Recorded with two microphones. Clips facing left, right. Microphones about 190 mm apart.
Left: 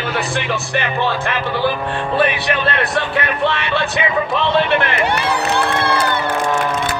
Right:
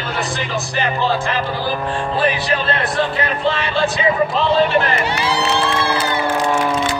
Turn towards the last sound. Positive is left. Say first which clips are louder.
# left 1 dB
turn(degrees=60)  # may be behind; listen again after turning